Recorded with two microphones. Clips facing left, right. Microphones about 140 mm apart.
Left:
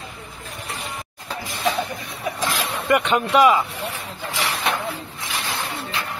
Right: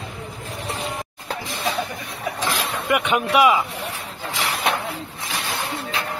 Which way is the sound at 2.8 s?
10° right (ahead or behind).